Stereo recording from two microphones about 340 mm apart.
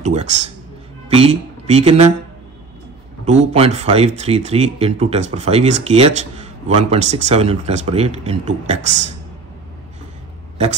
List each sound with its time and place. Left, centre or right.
0.0 s speech: centre
3.3 s speech: centre